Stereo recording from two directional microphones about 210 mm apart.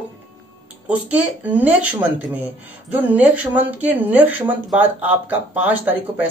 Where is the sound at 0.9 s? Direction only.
5° right (ahead or behind).